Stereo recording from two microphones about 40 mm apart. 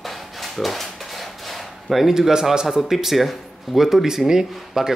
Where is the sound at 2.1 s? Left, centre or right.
Centre.